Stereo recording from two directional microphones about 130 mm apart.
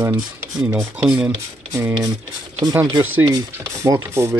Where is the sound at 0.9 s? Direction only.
10° right (ahead or behind).